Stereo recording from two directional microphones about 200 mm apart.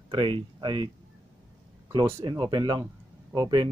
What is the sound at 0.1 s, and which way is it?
Speech, 25° right (ahead or behind).